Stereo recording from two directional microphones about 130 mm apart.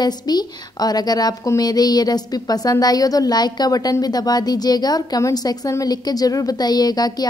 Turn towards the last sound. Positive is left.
turn(degrees=30)  # may be behind; listen again after turning